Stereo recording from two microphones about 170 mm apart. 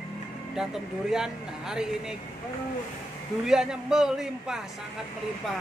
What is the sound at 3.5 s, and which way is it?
Speech, 5° right (ahead or behind).